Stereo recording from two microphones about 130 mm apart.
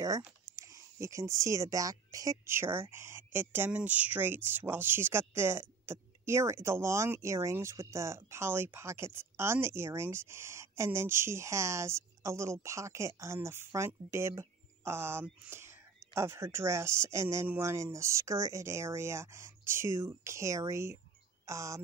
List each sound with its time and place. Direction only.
0.6 s speech: 25° right (ahead or behind)